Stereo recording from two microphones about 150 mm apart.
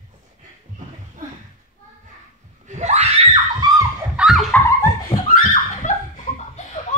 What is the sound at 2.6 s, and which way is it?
Screaming, 50° right (ahead or behind).